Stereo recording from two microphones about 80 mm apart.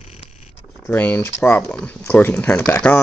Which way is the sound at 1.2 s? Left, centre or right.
Left.